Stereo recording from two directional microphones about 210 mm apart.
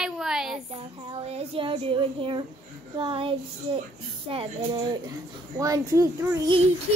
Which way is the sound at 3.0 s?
25° right (ahead or behind).